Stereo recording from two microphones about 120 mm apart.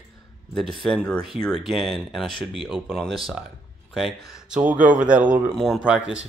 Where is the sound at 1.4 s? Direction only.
Centre (ahead or behind).